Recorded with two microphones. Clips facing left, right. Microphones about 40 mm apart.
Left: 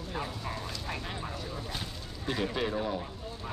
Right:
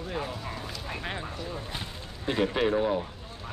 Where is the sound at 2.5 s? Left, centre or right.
Right.